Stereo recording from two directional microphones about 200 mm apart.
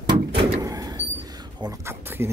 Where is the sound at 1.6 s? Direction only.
15° right (ahead or behind).